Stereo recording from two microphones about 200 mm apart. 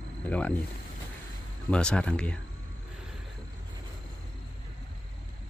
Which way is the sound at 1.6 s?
5° left (ahead or behind).